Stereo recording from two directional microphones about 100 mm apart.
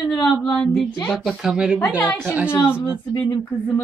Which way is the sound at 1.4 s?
5° right (ahead or behind).